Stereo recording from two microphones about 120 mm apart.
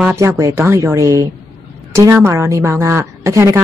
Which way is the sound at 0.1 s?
25° right (ahead or behind).